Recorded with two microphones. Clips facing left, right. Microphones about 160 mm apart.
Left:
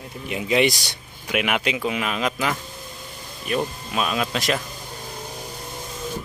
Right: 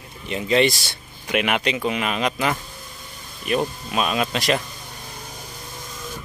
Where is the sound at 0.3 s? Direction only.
10° left (ahead or behind).